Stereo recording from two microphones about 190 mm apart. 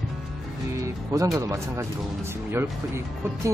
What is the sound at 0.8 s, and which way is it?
Speech, 15° right (ahead or behind).